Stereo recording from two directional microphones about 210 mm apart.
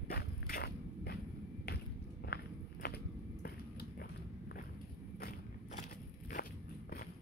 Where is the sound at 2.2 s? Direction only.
50° left (ahead or behind).